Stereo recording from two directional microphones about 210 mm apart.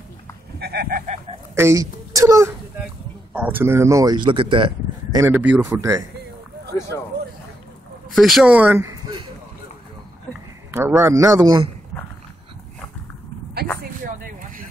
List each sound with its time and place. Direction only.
0.6 s a sound: 50° right (ahead or behind)
1.5 s a sound: 15° right (ahead or behind)
3.3 s speech: 10° right (ahead or behind)
5.2 s a man's voice: 10° right (ahead or behind)
8.1 s speech: centre (ahead or behind); by 9.3 s 20° right (ahead or behind)
10.7 s a man's voice: 10° right (ahead or behind)